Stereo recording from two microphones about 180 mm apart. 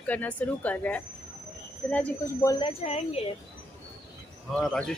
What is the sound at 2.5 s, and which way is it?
Speech, 25° left (ahead or behind).